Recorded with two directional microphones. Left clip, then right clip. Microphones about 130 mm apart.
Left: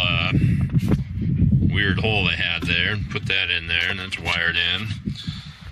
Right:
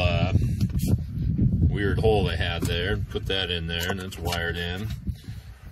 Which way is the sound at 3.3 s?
55° right (ahead or behind).